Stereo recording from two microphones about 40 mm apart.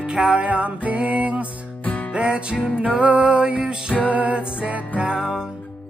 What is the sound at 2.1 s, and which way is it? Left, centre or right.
Music, right.